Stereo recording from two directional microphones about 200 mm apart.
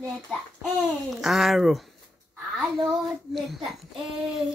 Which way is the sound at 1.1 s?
Centre (ahead or behind).